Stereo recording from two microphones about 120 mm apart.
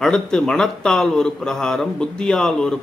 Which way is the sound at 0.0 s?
5° left (ahead or behind).